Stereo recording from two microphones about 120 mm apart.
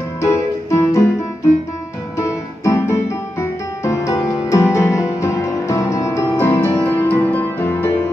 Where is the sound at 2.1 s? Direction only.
25° left (ahead or behind).